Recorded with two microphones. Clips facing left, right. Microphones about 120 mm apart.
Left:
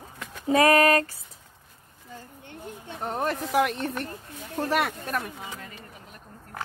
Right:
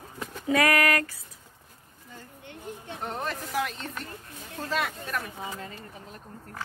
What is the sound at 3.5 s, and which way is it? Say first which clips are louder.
Speech: left 7 dB; 65° left (ahead or behind).